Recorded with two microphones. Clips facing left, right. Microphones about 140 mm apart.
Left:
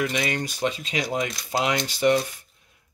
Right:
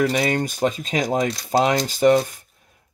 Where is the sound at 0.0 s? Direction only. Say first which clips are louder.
Right 6 dB; 35° right (ahead or behind).